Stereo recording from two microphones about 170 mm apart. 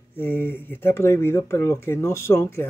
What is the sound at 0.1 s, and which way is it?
Speech, 10° left (ahead or behind).